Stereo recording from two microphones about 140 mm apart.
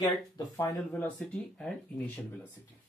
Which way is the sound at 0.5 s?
20° left (ahead or behind).